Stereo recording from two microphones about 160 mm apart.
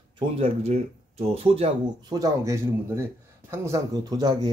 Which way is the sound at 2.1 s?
20° right (ahead or behind).